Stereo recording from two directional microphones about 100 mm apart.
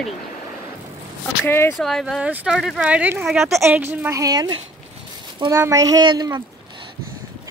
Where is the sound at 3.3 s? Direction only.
Centre (ahead or behind).